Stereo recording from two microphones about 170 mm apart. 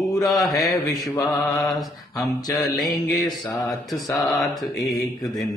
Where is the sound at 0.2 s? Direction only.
Centre (ahead or behind).